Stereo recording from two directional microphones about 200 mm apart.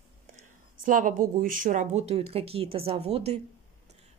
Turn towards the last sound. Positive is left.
turn(degrees=-30)  # may be behind; listen again after turning